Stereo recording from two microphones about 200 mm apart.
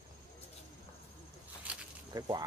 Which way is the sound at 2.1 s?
20° right (ahead or behind).